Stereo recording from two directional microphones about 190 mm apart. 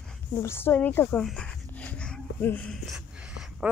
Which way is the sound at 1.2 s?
5° left (ahead or behind).